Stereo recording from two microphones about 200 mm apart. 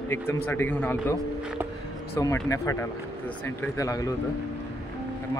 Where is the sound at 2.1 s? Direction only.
10° left (ahead or behind).